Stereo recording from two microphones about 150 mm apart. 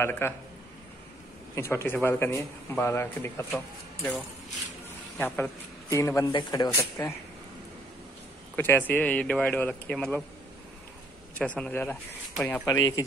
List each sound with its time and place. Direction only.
0.0 s speech: 15° left (ahead or behind)
1.5 s a man's voice: 15° left (ahead or behind)
8.5 s speech: 15° left (ahead or behind)
11.3 s speech: 10° left (ahead or behind)
12.6 s a man's voice: 25° left (ahead or behind)